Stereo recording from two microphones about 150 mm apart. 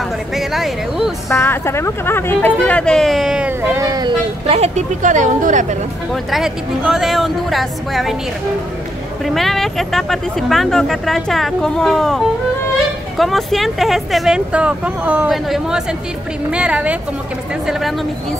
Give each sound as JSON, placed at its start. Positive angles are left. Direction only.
{"t": 0.3, "sound": "speech", "side_deg": 0}
{"t": 1.3, "sound": "speech", "side_deg": 15}
{"t": 4.5, "sound": "speech", "side_deg": -45}
{"t": 6.3, "sound": "speech", "side_deg": -5}
{"t": 9.2, "sound": "speech", "side_deg": 0}
{"t": 13.2, "sound": "a woman's voice", "side_deg": 0}